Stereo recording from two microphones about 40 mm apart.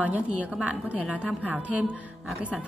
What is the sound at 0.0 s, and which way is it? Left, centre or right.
A woman's voice, right.